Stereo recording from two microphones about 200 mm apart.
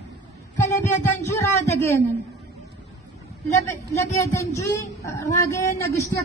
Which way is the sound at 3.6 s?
15° left (ahead or behind).